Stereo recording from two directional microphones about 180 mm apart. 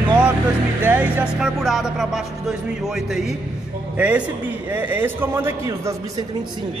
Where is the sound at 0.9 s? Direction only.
10° right (ahead or behind).